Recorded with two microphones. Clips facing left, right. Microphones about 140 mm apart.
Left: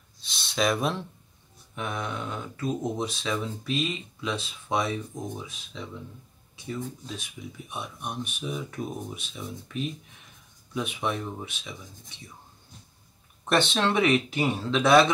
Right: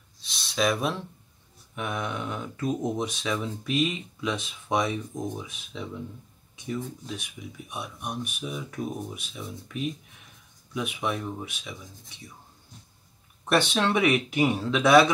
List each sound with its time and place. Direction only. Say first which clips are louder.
0.2 s speech: even; centre (ahead or behind); by 5.3 s 15° right (ahead or behind)
7.7 s speech: right 1 dB; 10° right (ahead or behind)
13.5 s speech: even; 10° right (ahead or behind)